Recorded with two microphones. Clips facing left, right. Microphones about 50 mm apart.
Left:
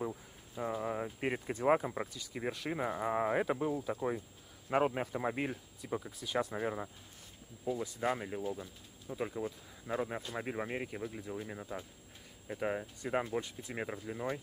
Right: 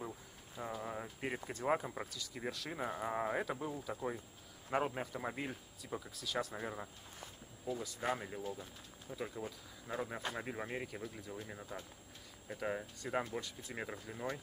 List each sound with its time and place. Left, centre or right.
0.0 s speech: centre